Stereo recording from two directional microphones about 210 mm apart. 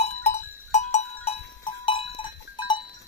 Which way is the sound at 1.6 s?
25° left (ahead or behind).